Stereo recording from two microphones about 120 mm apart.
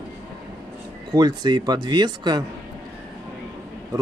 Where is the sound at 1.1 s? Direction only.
35° right (ahead or behind).